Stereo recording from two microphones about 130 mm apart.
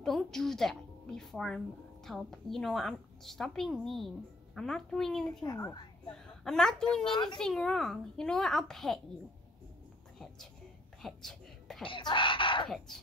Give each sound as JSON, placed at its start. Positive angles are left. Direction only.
{"t": 0.0, "sound": "a woman's voice", "side_deg": 0}
{"t": 5.4, "sound": "a woman's voice", "side_deg": 25}
{"t": 6.0, "sound": "a woman's voice", "side_deg": 5}
{"t": 10.1, "sound": "speech", "side_deg": 0}
{"t": 11.0, "sound": "a sound", "side_deg": 0}
{"t": 11.8, "sound": "speech", "side_deg": 40}
{"t": 12.6, "sound": "a woman's voice", "side_deg": 0}